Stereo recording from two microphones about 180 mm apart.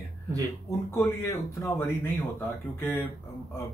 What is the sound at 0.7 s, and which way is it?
Speech, 15° left (ahead or behind).